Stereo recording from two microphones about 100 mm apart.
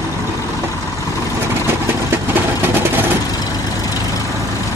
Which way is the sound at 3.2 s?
40° left (ahead or behind).